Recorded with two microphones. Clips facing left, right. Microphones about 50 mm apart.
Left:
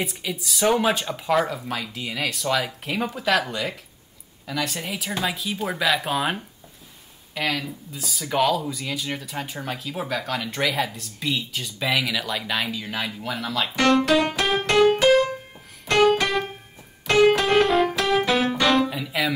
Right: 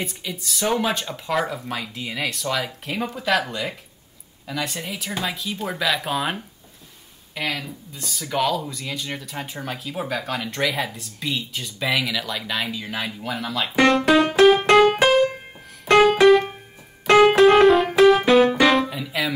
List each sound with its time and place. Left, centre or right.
0.0 s speech: centre
14.6 s music: centre
16.0 s keyboard: centre
17.0 s music: centre
17.5 s music: centre